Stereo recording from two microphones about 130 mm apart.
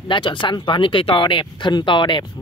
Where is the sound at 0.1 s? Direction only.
40° left (ahead or behind).